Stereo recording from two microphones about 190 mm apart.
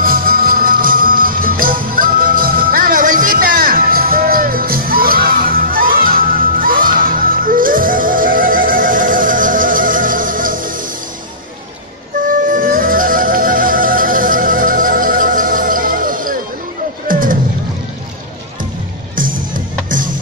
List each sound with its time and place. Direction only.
0.0 s music: 50° right (ahead or behind)
12.3 s music: 45° right (ahead or behind)